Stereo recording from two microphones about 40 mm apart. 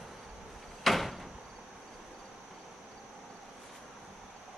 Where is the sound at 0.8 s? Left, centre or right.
Centre.